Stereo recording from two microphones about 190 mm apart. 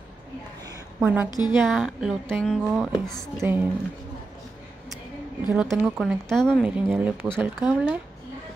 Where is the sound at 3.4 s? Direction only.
10° right (ahead or behind).